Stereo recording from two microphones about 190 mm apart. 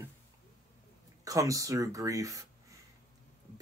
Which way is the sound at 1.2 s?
15° right (ahead or behind).